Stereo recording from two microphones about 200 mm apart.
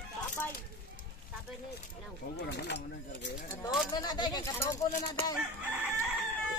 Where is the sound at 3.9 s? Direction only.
20° left (ahead or behind).